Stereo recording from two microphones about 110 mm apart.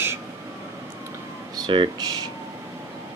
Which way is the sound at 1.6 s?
40° right (ahead or behind).